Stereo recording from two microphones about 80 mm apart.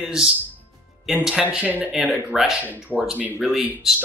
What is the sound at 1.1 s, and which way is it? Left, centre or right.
Speech, centre.